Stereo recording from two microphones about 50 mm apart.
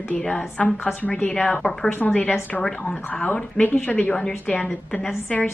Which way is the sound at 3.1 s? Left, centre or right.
Left.